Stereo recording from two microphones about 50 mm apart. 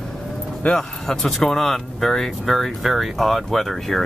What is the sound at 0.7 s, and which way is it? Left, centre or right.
Speech, centre.